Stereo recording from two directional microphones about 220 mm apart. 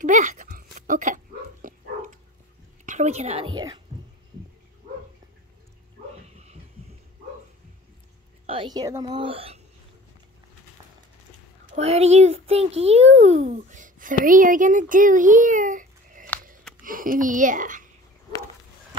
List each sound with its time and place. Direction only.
0.0 s dog: 35° right (ahead or behind)
2.8 s a woman's voice: 35° right (ahead or behind)
6.3 s a sound: 30° right (ahead or behind)
8.5 s a child's voice: 20° right (ahead or behind)
11.7 s a child's voice: 30° right (ahead or behind)